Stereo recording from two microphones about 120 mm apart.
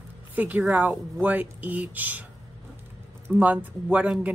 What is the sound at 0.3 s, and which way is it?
Speech, 15° right (ahead or behind).